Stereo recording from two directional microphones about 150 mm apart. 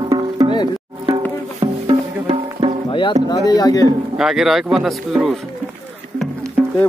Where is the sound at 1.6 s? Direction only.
35° right (ahead or behind).